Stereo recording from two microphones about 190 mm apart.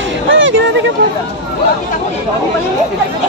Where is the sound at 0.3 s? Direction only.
80° right.